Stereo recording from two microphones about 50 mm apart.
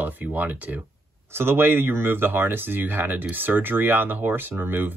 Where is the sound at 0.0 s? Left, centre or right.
Right.